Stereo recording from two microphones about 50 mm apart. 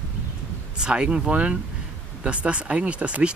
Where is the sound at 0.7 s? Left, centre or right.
Centre.